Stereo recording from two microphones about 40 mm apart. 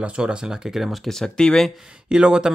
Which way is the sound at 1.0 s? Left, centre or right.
Centre.